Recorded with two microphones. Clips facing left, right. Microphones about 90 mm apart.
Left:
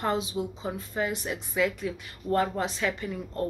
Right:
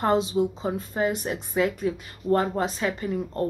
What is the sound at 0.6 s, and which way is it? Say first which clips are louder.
Speech: right 4 dB; 45° right (ahead or behind).